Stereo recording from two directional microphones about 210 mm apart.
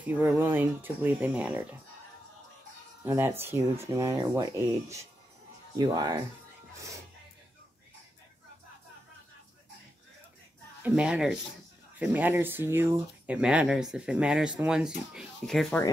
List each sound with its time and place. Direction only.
0.0 s speech: 10° right (ahead or behind)
3.0 s speech: 10° right (ahead or behind)
10.8 s speech: 5° right (ahead or behind)